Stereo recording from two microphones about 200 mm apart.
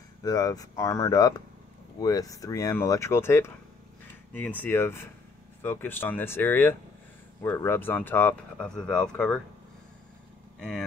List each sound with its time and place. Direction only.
0.2 s speech: 20° left (ahead or behind)
10.6 s speech: 5° left (ahead or behind)